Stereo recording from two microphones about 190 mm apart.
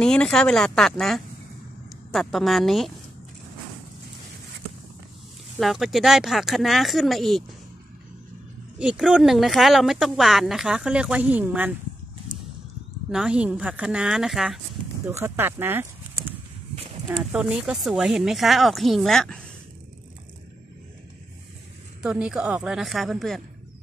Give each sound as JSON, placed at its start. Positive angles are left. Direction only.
{"t": 0.0, "sound": "speech", "side_deg": 5}
{"t": 5.6, "sound": "speech", "side_deg": 0}
{"t": 8.7, "sound": "speech", "side_deg": -5}
{"t": 13.1, "sound": "speech", "side_deg": -5}
{"t": 15.0, "sound": "speech", "side_deg": -10}
{"t": 16.7, "sound": "a sound", "side_deg": -30}
{"t": 17.1, "sound": "speech", "side_deg": -5}
{"t": 22.0, "sound": "speech", "side_deg": -5}